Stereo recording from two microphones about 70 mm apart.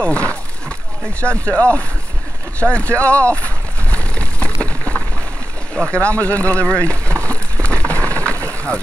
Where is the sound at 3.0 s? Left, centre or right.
Centre.